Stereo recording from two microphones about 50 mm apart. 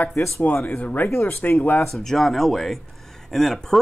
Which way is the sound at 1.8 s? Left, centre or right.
Centre.